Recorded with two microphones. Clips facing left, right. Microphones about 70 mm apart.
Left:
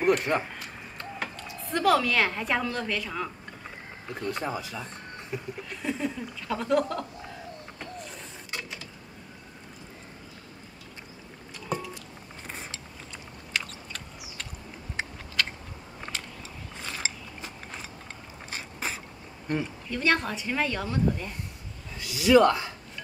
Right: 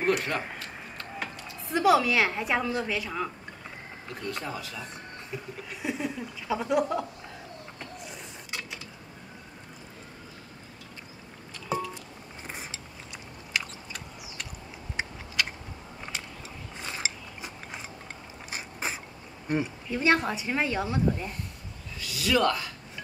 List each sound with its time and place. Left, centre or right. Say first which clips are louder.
0.3 s speech: left 4 dB; left
1.2 s a woman's voice: left 1 dB; centre
4.1 s speech: left 4 dB; left
5.8 s a woman's voice: left 1 dB; centre
7.8 s a sound: left 3 dB; centre
13.5 s chewing: even; centre
15.4 s a sound: even; centre
16.8 s gears: even; centre
18.5 s biting: even; centre
19.4 s a woman's voice: right 1 dB; centre
22.0 s speech: left 6 dB; left